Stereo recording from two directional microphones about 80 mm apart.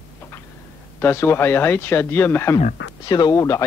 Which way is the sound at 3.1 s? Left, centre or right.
Left.